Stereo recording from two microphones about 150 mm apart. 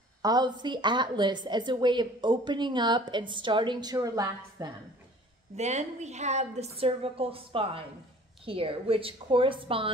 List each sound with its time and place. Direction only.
0.2 s a woman's voice: 25° right (ahead or behind)
5.6 s a woman's voice: 50° right (ahead or behind)